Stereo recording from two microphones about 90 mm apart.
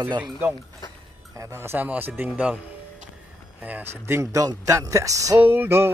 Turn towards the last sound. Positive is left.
turn(degrees=-25)  # may be behind; listen again after turning